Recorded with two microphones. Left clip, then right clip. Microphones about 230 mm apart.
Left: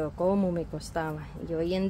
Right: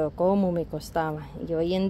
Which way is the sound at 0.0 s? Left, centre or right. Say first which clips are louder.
Right 4 dB; centre.